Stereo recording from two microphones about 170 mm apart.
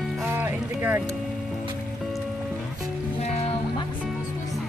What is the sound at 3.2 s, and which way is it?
Music, 40° left (ahead or behind).